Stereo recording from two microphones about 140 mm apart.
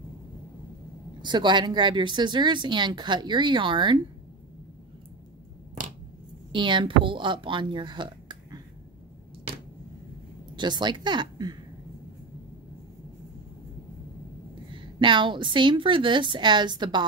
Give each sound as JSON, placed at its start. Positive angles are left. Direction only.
{"t": 1.2, "sound": "speech", "side_deg": -35}
{"t": 6.5, "sound": "speech", "side_deg": -35}
{"t": 10.5, "sound": "a woman's voice", "side_deg": -35}
{"t": 14.7, "sound": "speech", "side_deg": -35}